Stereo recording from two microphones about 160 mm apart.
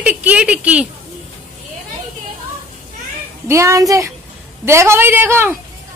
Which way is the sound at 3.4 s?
20° right (ahead or behind).